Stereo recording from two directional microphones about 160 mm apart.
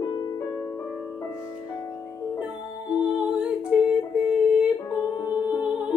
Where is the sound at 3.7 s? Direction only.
5° right (ahead or behind).